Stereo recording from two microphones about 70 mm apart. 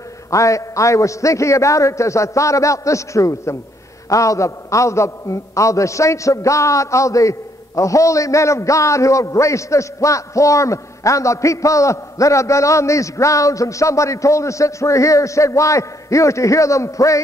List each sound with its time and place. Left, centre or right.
0.3 s a man's voice: left